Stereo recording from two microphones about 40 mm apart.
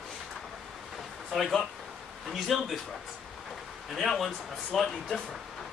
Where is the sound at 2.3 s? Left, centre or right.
Centre.